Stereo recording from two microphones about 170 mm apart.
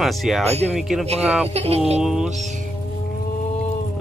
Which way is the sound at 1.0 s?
40° right (ahead or behind).